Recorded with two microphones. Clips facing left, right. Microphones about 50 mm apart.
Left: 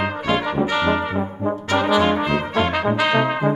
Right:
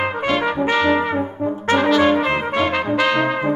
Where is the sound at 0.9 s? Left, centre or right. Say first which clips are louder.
Right 3 dB; right.